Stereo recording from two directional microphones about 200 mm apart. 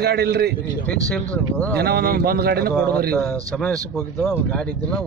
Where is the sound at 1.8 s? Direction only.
55° right (ahead or behind).